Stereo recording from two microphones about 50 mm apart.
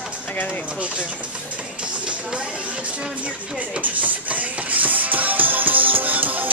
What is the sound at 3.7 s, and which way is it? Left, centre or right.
Music, right.